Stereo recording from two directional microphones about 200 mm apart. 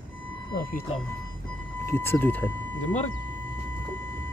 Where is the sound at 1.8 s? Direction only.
10° left (ahead or behind).